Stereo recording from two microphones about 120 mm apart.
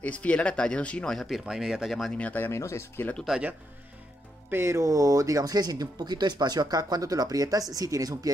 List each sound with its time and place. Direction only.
0.0 s speech: 10° left (ahead or behind)
2.1 s speech: 15° left (ahead or behind)
3.2 s speech: 5° right (ahead or behind)
4.5 s speech: 20° right (ahead or behind)